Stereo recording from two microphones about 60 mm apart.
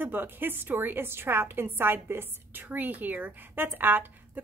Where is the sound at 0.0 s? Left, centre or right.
Right.